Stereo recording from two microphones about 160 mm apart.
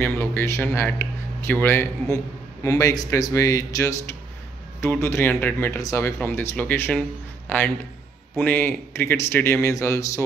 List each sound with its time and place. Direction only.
0.0 s speech: 15° left (ahead or behind)